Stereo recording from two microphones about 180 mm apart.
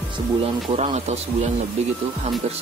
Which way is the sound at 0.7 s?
40° right (ahead or behind).